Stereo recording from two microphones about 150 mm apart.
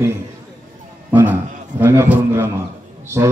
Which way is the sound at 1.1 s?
10° right (ahead or behind).